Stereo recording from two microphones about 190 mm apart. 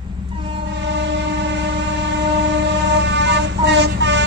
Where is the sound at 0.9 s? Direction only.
70° right (ahead or behind).